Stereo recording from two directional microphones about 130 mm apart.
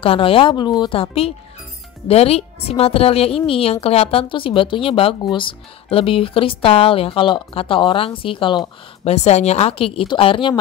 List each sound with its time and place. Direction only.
0.0 s speech: 45° left (ahead or behind)
2.0 s speech: 50° left (ahead or behind)
9.1 s speech: 60° left (ahead or behind); by 10.6 s 40° left (ahead or behind)